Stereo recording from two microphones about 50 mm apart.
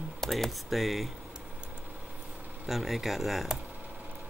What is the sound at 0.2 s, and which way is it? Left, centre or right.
Speech, centre.